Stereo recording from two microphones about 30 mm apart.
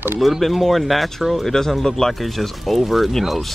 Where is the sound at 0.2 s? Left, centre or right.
Centre.